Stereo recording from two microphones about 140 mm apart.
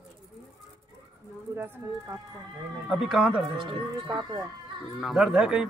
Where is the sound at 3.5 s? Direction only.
35° right (ahead or behind).